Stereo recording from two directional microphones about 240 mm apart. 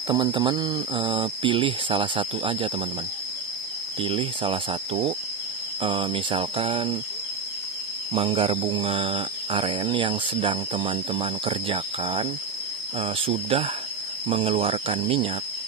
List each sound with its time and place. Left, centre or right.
0.1 s speech: centre
4.0 s speech: right
8.1 s speech: right